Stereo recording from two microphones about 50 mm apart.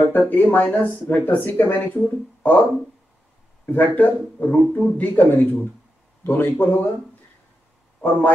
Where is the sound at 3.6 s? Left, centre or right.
Left.